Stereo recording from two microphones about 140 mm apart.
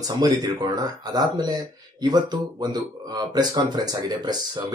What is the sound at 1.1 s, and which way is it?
Speech, 30° right (ahead or behind).